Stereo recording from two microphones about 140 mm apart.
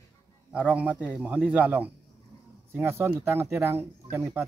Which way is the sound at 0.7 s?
10° right (ahead or behind).